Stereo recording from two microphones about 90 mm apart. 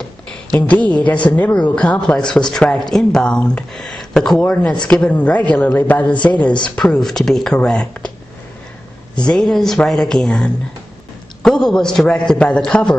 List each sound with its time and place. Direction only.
0.7 s speech: 15° left (ahead or behind)
6.8 s speech: 5° left (ahead or behind)
9.1 s speech: 10° left (ahead or behind)